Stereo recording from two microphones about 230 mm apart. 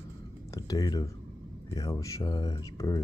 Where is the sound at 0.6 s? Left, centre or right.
Centre.